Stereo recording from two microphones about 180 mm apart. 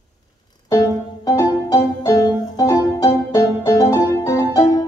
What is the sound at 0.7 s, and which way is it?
Music, 20° left (ahead or behind).